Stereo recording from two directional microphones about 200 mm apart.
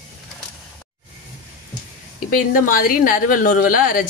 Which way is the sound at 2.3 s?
45° left (ahead or behind).